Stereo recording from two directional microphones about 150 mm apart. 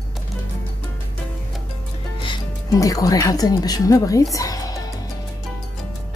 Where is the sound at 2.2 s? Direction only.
25° left (ahead or behind).